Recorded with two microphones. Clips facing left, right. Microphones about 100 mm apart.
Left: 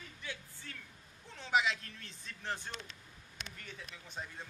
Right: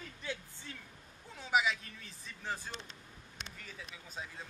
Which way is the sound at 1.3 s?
5° right (ahead or behind).